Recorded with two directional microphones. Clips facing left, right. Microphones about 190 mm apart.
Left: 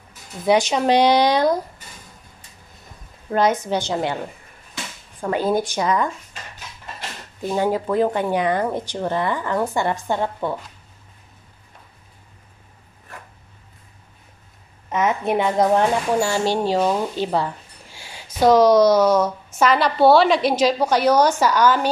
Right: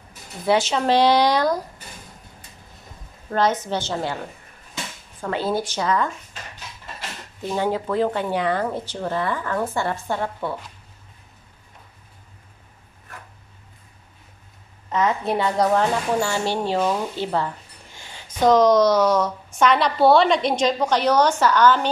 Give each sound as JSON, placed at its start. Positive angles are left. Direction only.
{"t": 0.5, "sound": "a woman's voice", "side_deg": 15}
{"t": 3.3, "sound": "a woman's voice", "side_deg": 10}
{"t": 5.2, "sound": "a woman's voice", "side_deg": 15}
{"t": 7.4, "sound": "a woman's voice", "side_deg": 10}
{"t": 14.9, "sound": "a woman's voice", "side_deg": 20}